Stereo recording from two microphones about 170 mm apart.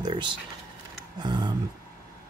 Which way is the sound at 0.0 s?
25° right (ahead or behind).